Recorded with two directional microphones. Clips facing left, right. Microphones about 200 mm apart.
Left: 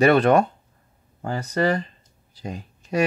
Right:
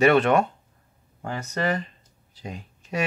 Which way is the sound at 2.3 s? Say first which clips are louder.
Left 4 dB; 40° left (ahead or behind).